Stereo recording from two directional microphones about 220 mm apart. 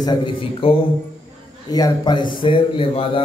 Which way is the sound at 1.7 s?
20° left (ahead or behind).